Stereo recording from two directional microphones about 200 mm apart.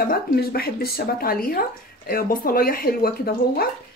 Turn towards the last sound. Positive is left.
turn(degrees=50)  # may be behind; listen again after turning